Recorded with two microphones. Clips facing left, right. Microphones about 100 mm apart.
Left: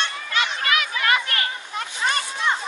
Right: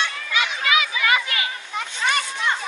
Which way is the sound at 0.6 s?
45° left (ahead or behind).